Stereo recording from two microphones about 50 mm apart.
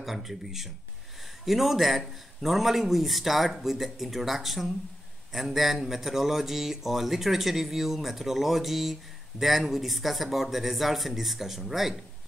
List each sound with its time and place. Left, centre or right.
0.0 s speech: centre